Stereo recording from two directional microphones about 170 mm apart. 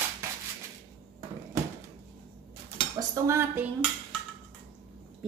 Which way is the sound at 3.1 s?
15° right (ahead or behind).